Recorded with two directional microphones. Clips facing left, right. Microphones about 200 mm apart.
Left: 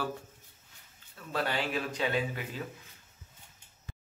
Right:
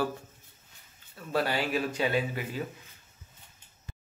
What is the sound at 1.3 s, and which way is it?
Speech, 10° right (ahead or behind).